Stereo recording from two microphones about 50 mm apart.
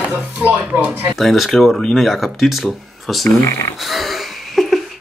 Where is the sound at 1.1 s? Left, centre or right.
Centre.